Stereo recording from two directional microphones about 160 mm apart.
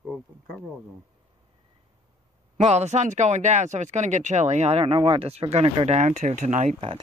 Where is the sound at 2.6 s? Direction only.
45° right (ahead or behind).